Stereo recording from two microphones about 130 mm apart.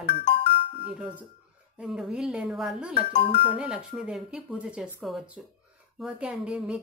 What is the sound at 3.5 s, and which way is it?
A woman's voice, 5° right (ahead or behind).